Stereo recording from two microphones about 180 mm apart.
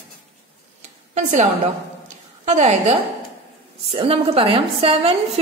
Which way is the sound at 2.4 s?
40° right (ahead or behind).